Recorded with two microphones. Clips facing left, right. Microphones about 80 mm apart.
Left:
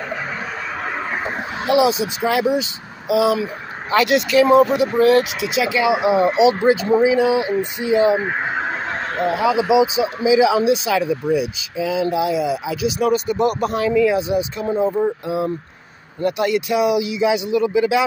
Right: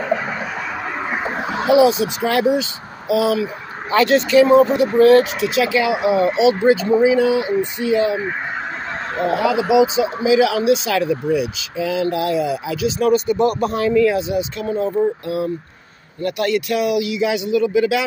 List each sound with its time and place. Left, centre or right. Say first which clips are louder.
1.7 s speech: right 3 dB; centre
6.2 s speech: even; left
7.0 s speech: right 1 dB; centre
9.3 s speech: even; centre
14.6 s speech: right 1 dB; left